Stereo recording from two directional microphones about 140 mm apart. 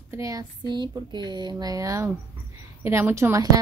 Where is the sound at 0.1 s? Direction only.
25° right (ahead or behind).